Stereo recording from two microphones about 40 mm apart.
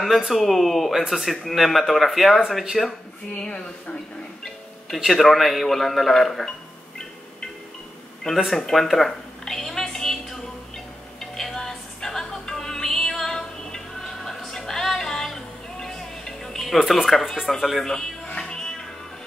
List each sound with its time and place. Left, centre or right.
0.3 s speech: centre
3.3 s speech: left
4.9 s speech: centre
8.3 s speech: centre
9.4 s a sound: centre
11.1 s music: centre
17.8 s speech: centre
18.4 s music: centre